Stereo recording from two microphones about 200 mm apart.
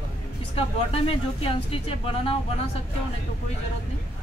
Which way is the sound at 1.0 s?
30° left (ahead or behind).